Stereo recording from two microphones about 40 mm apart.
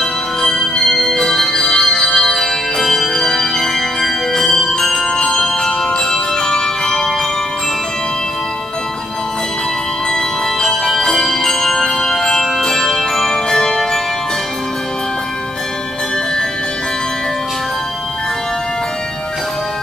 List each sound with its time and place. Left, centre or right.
0.0 s music: centre
10.6 s music: centre